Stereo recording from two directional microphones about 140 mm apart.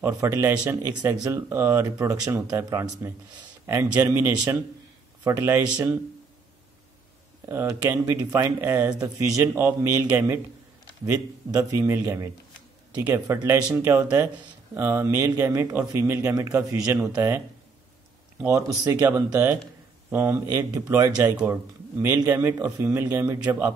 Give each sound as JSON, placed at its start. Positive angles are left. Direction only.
{"t": 0.0, "sound": "speech", "side_deg": -20}
{"t": 7.4, "sound": "speech", "side_deg": -20}
{"t": 18.5, "sound": "speech", "side_deg": -25}